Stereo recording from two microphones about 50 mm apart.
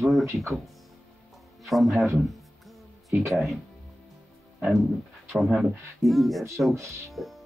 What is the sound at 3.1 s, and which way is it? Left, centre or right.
Speech, right.